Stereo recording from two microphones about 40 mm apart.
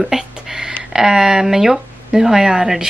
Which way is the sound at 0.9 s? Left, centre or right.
Centre.